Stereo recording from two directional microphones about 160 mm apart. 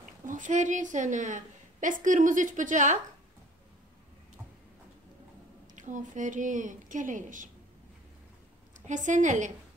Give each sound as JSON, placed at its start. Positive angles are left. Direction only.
{"t": 0.3, "sound": "a woman's voice", "side_deg": -50}
{"t": 5.8, "sound": "a woman's voice", "side_deg": -50}
{"t": 8.8, "sound": "a woman's voice", "side_deg": -50}